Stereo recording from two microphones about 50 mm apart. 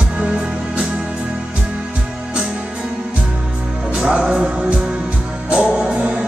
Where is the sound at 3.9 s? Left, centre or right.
Right.